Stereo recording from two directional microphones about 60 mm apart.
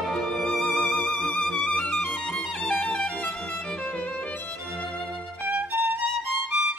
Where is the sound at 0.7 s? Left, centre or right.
Centre.